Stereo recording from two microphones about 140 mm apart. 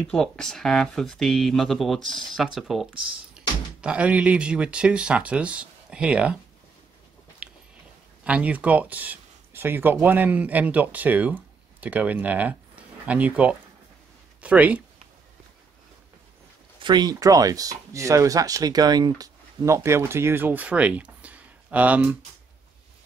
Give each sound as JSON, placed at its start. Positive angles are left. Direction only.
{"t": 0.0, "sound": "speech", "side_deg": 5}
{"t": 7.4, "sound": "a sound", "side_deg": -5}
{"t": 8.2, "sound": "speech", "side_deg": -10}
{"t": 16.8, "sound": "speech", "side_deg": -30}